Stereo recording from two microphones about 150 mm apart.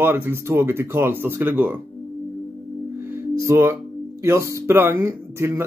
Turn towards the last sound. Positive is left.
turn(degrees=-15)  # may be behind; listen again after turning